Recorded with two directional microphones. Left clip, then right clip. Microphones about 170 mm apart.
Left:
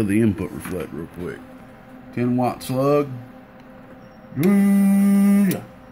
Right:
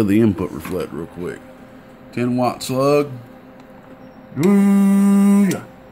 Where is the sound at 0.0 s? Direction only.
25° right (ahead or behind).